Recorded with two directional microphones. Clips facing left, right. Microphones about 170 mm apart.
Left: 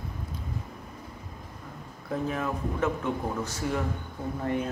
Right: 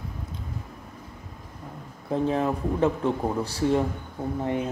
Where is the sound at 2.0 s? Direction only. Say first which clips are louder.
Right 6 dB; 30° right (ahead or behind).